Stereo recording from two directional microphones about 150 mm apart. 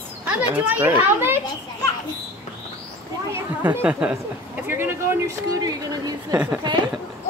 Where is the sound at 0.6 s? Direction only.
10° right (ahead or behind).